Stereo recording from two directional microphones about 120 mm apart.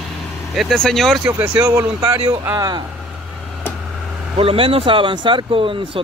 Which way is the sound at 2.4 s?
30° right (ahead or behind).